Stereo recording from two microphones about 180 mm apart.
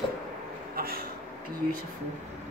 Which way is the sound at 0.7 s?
55° right (ahead or behind).